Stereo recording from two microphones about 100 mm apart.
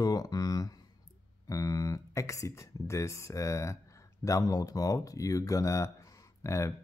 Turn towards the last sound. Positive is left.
turn(degrees=30)  # may be behind; listen again after turning